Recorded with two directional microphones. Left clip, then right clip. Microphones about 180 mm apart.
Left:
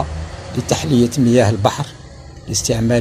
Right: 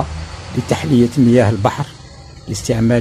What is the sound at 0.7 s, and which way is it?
Speech, 30° right (ahead or behind).